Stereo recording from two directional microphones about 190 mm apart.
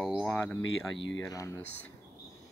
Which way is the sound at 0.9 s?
75° left (ahead or behind).